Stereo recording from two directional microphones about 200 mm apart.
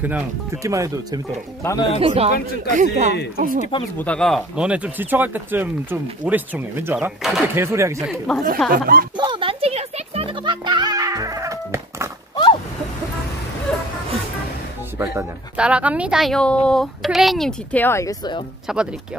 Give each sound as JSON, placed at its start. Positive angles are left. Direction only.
{"t": 0.0, "sound": "speech", "side_deg": -10}
{"t": 2.0, "sound": "speech", "side_deg": -30}
{"t": 4.0, "sound": "speech", "side_deg": 5}
{"t": 7.5, "sound": "speech", "side_deg": -15}
{"t": 8.3, "sound": "a woman's voice", "side_deg": 0}
{"t": 8.6, "sound": "speech", "side_deg": -45}
{"t": 9.1, "sound": "music", "side_deg": -20}
{"t": 13.7, "sound": "a sound", "side_deg": 5}
{"t": 15.0, "sound": "a woman's voice", "side_deg": -10}
{"t": 18.7, "sound": "a woman's voice", "side_deg": 0}